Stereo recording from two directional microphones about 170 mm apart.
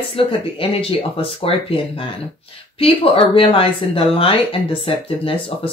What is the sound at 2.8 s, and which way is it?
Speech, 35° left (ahead or behind).